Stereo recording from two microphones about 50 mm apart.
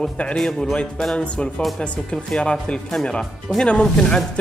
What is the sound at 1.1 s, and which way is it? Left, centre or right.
Speech, left.